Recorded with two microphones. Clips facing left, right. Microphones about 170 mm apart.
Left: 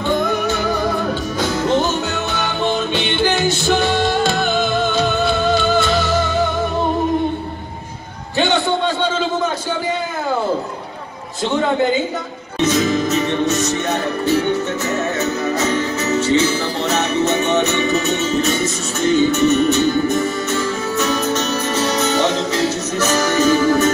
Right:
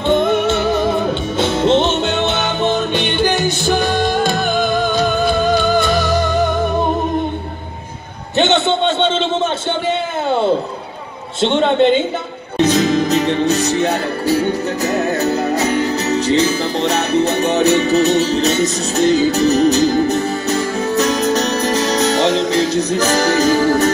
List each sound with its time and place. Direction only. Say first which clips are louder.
0.1 s music: right 5 dB; 25° right (ahead or behind)
8.4 s a sound: right 3 dB; 25° right (ahead or behind)
11.4 s a man's voice: right 4 dB; 25° right (ahead or behind)
12.5 s music: right 3 dB; 35° right (ahead or behind)